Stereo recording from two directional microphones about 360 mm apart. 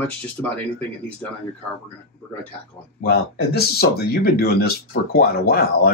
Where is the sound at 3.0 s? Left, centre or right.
Left.